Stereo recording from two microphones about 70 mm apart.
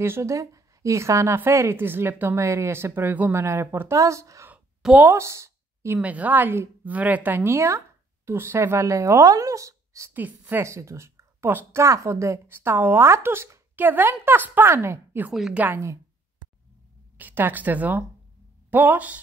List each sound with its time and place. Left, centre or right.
0.0 s a woman's voice: right
2.3 s a woman's voice: right
3.3 s a woman's voice: right
3.9 s speech: right
5.1 s a sound: right
6.0 s speech: right
10.1 s a woman's voice: right
10.6 s a woman's voice: right
15.5 s speech: right
17.2 s speech: right